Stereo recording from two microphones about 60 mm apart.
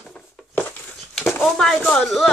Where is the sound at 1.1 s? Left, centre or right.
Centre.